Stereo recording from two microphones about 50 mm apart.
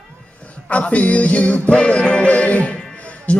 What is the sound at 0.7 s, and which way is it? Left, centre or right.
Music, left.